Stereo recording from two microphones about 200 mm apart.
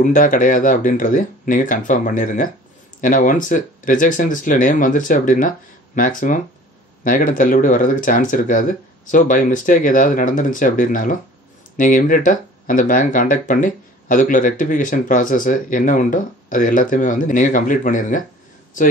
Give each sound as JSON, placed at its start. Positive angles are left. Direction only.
{"t": 0.0, "sound": "speech", "side_deg": 40}